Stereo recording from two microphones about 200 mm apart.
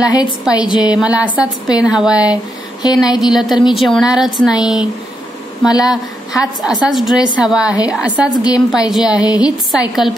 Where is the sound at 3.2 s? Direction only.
Centre (ahead or behind).